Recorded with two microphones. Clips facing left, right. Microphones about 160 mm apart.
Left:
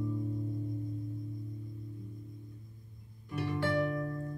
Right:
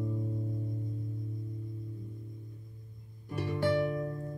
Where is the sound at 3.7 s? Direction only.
20° right (ahead or behind).